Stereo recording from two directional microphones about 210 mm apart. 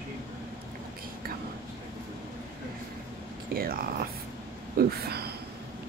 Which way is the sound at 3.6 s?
45° right (ahead or behind).